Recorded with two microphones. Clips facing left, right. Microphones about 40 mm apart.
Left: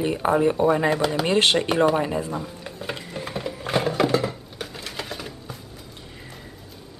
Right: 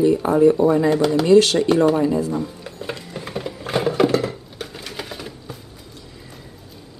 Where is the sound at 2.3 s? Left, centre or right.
Centre.